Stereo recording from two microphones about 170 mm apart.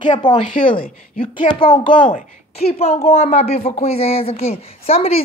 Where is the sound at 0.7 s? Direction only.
55° left (ahead or behind).